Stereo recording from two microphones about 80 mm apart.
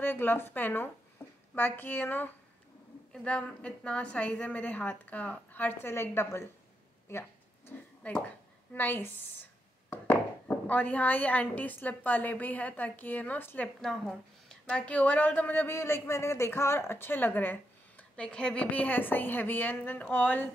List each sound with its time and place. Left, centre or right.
0.0 s a woman's voice: left
3.1 s a woman's voice: centre; by 6.5 s left
7.1 s a sound: left
8.0 s a woman's voice: centre
13.7 s a woman's voice: centre; by 20.4 s left